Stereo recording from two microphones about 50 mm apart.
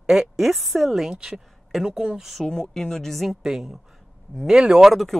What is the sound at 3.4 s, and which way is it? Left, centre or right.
Speech, centre.